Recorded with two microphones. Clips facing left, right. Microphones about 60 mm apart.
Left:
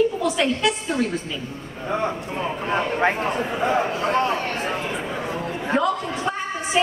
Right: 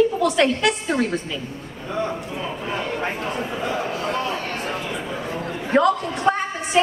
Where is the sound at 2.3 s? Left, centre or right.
Left.